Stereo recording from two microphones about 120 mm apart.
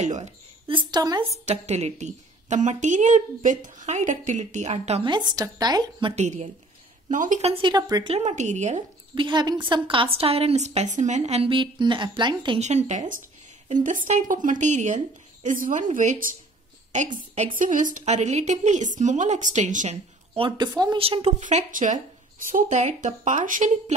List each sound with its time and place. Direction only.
0.0 s a woman's voice: 85° right
0.7 s a woman's voice: 40° right (ahead or behind)
1.4 s a woman's voice: 65° right (ahead or behind)
5.0 s a woman's voice: 40° right (ahead or behind)
6.1 s speech: 70° right (ahead or behind)
7.1 s speech: 90° right
7.5 s a woman's voice: 40° right (ahead or behind)
8.1 s speech: 70° right (ahead or behind)
9.1 s a woman's voice: 40° right (ahead or behind); by 11.5 s 65° right (ahead or behind)
11.5 s a woman's voice: 40° right (ahead or behind)
12.5 s speech: 70° right (ahead or behind)
13.7 s a woman's voice: 90° right
20.3 s a woman's voice: 40° right (ahead or behind)
21.0 s speech: 55° right (ahead or behind); by 23.7 s 90° right